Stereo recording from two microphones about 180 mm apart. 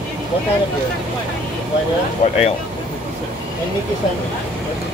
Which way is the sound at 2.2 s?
35° left (ahead or behind).